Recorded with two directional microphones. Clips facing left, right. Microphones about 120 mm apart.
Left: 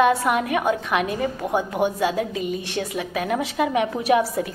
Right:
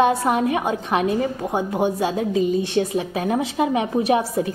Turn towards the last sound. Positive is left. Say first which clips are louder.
# right 1 dB
turn(degrees=-25)  # may be behind; listen again after turning